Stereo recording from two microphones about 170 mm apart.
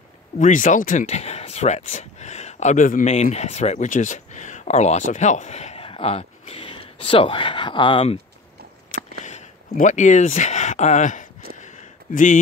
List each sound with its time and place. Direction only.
0.4 s speech: 50° left (ahead or behind); by 8.2 s 30° left (ahead or behind)
9.2 s speech: 45° left (ahead or behind)
11.5 s a sound: 45° left (ahead or behind)